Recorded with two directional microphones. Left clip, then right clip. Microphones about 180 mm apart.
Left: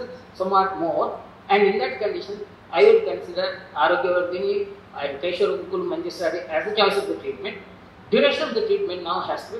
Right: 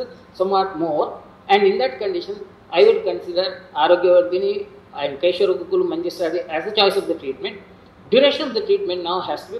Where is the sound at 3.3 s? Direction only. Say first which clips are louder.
Right 2 dB; 55° right (ahead or behind).